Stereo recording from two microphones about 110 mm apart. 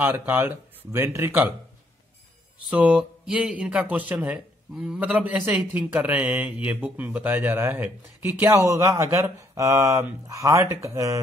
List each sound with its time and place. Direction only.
0.0 s speech: 15° right (ahead or behind)
2.7 s speech: 10° right (ahead or behind)
8.5 s speech: 30° right (ahead or behind)